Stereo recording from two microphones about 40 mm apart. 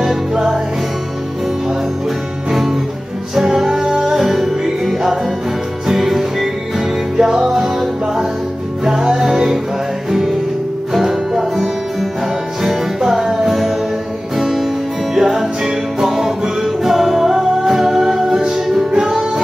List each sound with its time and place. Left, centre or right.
0.3 s music: centre
3.3 s music: centre
10.9 s music: centre
18.3 s music: centre